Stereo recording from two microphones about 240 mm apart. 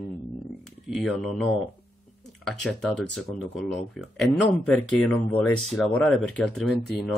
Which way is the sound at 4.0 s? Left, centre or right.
Centre.